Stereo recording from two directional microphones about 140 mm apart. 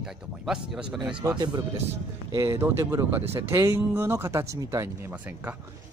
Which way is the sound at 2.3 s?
20° right (ahead or behind).